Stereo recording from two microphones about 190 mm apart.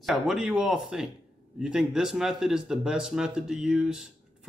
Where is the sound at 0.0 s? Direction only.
Centre (ahead or behind).